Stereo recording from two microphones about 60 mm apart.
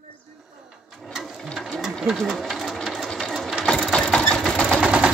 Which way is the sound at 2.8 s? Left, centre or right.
Centre.